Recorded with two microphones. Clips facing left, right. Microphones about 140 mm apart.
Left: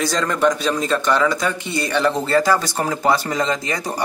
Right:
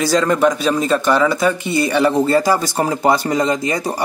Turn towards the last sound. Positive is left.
turn(degrees=-10)  # may be behind; listen again after turning